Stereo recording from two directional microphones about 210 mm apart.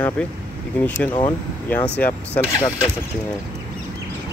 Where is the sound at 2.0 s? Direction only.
10° left (ahead or behind).